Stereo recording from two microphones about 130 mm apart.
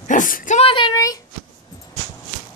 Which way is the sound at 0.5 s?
40° left (ahead or behind).